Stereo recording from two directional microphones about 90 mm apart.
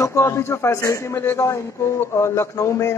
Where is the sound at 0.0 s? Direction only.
30° left (ahead or behind).